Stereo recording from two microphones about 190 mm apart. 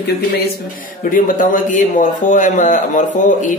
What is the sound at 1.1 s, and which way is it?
A man's voice, 45° left (ahead or behind).